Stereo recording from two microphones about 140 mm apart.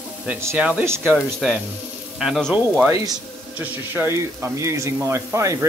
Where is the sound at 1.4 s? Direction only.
5° right (ahead or behind).